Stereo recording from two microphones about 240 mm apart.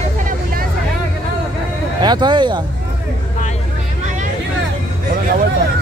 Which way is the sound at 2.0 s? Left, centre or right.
Centre.